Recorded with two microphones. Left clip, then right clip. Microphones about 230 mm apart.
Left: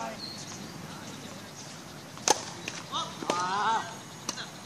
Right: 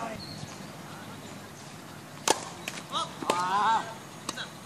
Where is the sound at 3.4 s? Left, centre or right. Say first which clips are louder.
Right 3 dB; right.